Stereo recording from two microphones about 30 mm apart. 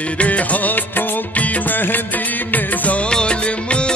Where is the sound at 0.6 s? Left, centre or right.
Left.